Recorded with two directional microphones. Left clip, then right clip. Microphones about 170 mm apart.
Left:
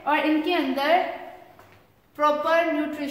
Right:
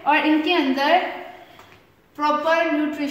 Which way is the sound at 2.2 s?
5° left (ahead or behind).